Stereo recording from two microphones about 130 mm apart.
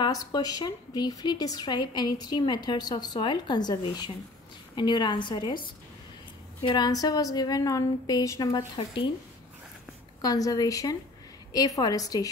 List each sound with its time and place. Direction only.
0.0 s speech: 30° left (ahead or behind)
6.7 s a woman's voice: 30° left (ahead or behind)
8.7 s speech: 40° left (ahead or behind)
10.2 s a woman's voice: 30° left (ahead or behind)